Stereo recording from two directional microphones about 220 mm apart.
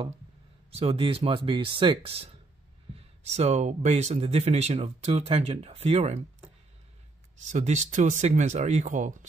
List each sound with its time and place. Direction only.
0.7 s speech: 25° right (ahead or behind)
7.4 s speech: 35° right (ahead or behind)